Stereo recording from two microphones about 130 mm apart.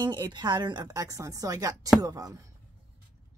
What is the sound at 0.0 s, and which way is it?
A woman's voice, 35° right (ahead or behind).